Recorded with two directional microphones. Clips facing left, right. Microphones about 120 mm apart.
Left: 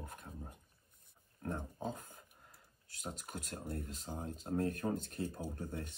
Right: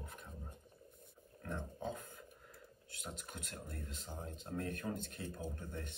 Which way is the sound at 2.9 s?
35° left (ahead or behind).